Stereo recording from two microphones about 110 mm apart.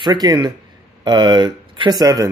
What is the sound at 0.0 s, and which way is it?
Speech, 40° right (ahead or behind).